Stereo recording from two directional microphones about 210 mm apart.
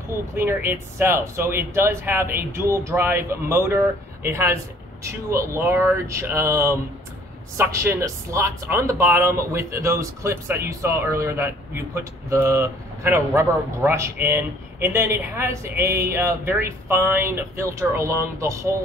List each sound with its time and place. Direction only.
0.4 s speech: 10° right (ahead or behind)